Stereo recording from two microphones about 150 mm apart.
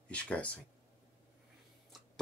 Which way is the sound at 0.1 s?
10° left (ahead or behind).